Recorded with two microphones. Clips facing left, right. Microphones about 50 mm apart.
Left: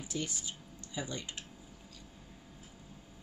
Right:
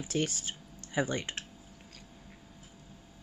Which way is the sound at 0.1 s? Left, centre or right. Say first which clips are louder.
Right 7 dB; right.